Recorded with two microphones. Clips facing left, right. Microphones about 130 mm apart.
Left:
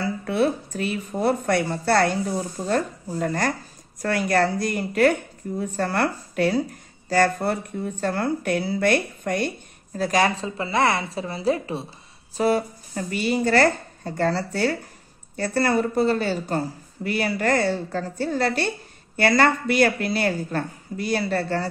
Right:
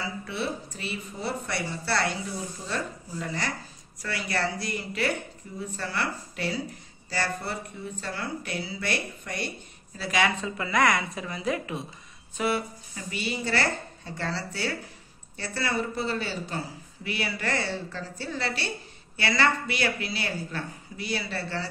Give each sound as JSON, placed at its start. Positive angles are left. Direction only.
{"t": 0.0, "sound": "speech", "side_deg": 50}